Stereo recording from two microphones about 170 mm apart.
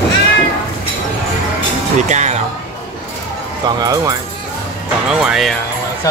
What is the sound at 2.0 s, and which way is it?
Speech, 45° right (ahead or behind).